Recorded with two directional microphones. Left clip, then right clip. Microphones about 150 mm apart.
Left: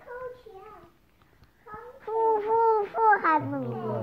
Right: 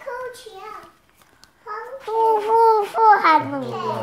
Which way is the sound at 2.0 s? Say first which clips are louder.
Right 7 dB; 10° right (ahead or behind).